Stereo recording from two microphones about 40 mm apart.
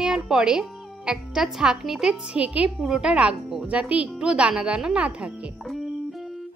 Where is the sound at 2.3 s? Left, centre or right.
Right.